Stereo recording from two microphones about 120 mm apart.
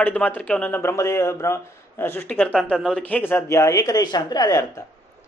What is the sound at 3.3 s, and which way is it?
Speech, 25° left (ahead or behind).